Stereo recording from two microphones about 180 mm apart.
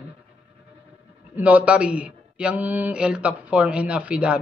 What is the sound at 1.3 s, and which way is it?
A man's voice, 10° right (ahead or behind).